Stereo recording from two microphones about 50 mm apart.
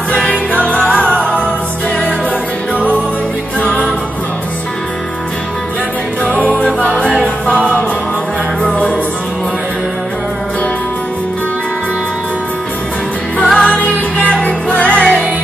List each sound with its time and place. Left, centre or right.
0.5 s music: left
3.6 s music: left
6.2 s music: left
8.6 s music: left
13.4 s music: centre
14.1 s music: left